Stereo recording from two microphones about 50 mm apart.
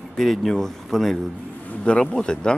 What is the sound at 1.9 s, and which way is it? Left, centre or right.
Speech, centre.